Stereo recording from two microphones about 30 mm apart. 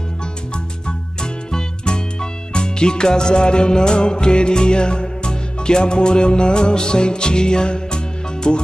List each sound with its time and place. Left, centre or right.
0.8 s music: left